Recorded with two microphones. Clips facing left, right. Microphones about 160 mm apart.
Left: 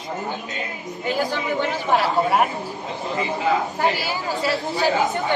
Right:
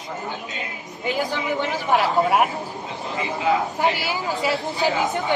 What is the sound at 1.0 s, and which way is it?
Speech, 15° right (ahead or behind).